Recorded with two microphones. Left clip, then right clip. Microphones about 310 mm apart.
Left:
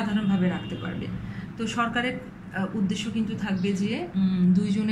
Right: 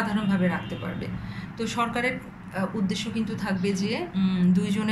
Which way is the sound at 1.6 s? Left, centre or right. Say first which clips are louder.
Even; centre.